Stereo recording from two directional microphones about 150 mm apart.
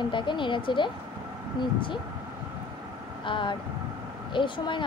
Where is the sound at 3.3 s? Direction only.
35° left (ahead or behind).